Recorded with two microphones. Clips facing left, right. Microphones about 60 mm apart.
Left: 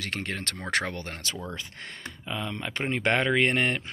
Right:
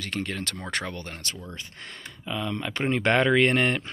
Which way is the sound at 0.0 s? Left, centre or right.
Left.